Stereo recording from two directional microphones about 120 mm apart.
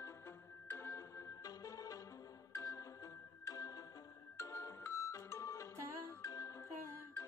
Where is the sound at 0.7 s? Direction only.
20° left (ahead or behind).